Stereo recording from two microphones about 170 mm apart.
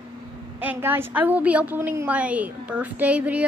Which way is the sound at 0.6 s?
10° right (ahead or behind).